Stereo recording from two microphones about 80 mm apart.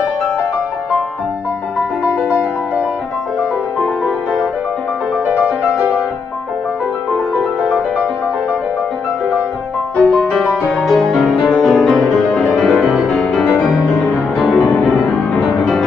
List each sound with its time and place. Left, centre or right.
2.2 s music: centre
5.4 s music: centre
10.0 s music: centre
14.6 s music: left
14.9 s music: centre